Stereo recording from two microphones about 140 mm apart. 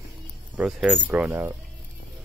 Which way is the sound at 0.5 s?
10° right (ahead or behind).